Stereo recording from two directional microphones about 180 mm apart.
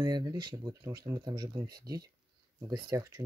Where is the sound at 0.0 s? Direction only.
25° right (ahead or behind).